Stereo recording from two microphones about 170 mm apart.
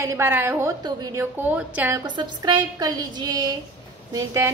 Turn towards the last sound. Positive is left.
turn(degrees=-20)  # may be behind; listen again after turning